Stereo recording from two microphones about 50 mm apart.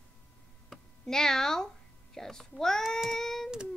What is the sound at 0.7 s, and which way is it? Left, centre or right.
Speech, centre.